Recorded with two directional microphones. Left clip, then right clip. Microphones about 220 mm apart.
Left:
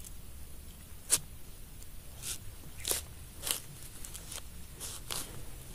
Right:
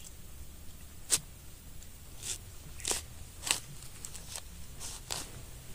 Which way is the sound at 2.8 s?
15° left (ahead or behind).